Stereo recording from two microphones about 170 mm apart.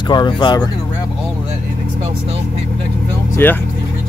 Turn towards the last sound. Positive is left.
turn(degrees=10)  # may be behind; listen again after turning